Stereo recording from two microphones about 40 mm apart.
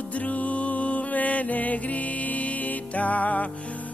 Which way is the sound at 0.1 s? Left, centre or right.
Left.